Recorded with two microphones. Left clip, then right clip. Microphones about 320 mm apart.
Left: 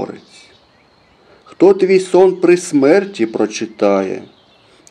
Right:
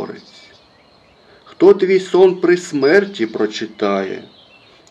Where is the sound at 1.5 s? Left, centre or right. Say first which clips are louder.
Left 1 dB; left.